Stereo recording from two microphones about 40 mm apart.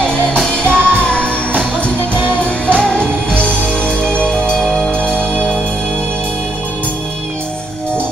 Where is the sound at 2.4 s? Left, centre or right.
Left.